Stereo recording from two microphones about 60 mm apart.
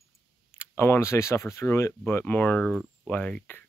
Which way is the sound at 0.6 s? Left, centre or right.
Left.